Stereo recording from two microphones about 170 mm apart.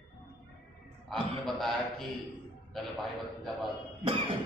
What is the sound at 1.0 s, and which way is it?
A man's voice, centre (ahead or behind).